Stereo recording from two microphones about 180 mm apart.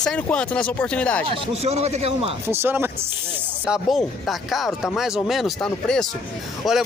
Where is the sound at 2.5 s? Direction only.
10° right (ahead or behind).